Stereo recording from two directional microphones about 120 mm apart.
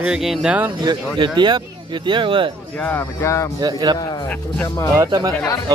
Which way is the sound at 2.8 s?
20° left (ahead or behind).